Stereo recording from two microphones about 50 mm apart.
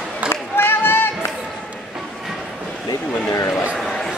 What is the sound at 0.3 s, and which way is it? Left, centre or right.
Run, left.